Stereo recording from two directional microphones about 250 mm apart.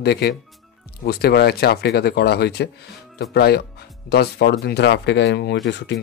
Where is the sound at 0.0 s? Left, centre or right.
Left.